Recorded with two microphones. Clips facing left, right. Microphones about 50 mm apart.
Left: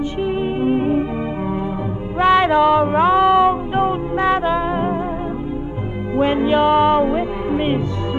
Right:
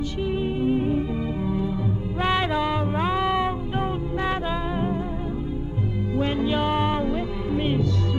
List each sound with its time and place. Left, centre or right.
0.2 s music: left
2.3 s a sound: left
2.6 s music: left
3.7 s music: left
6.1 s music: left